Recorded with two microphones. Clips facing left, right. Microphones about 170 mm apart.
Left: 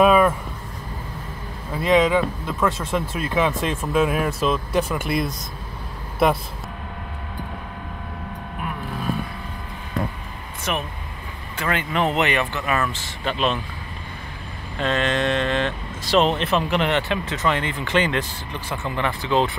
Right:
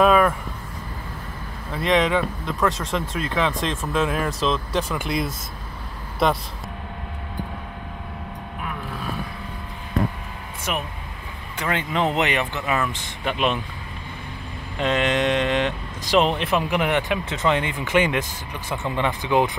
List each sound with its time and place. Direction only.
0.0 s speech: 5° left (ahead or behind)
1.8 s speech: centre (ahead or behind)
10.7 s speech: 15° right (ahead or behind)
14.8 s speech: 15° right (ahead or behind)